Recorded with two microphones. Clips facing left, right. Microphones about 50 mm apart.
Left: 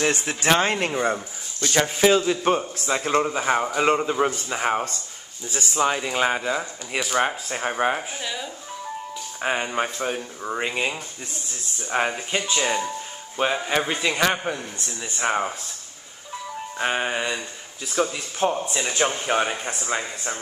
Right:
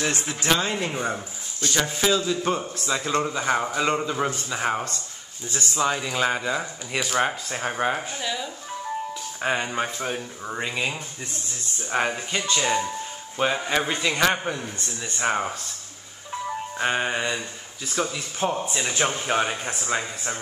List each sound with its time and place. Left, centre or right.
0.0 s speech: left
1.7 s speech: left
3.2 s speech: centre
6.0 s speech: left
6.3 s a man's voice: centre
11.9 s a man's voice: centre
16.7 s a man's voice: centre